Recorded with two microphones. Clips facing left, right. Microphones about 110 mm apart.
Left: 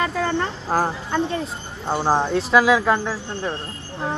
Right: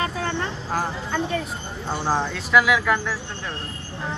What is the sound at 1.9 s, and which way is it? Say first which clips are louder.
Speech: left 5 dB; 30° left (ahead or behind).